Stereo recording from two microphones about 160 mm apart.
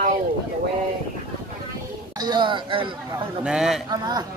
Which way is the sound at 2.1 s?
25° right (ahead or behind).